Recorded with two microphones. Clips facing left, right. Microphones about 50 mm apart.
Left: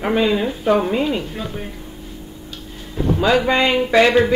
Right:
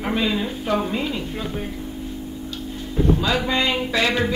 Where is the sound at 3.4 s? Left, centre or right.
Left.